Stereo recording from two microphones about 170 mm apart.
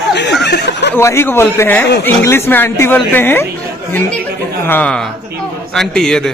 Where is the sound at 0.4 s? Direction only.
85° left.